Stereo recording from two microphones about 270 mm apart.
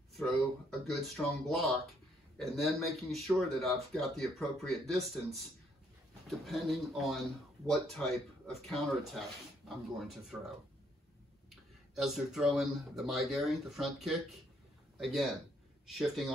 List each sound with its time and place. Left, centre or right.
0.1 s a sound: centre
0.8 s a man's voice: centre
6.4 s a man's voice: centre
11.9 s a man's voice: centre